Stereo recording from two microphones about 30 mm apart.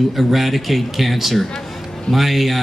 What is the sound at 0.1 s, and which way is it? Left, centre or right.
Speech, centre.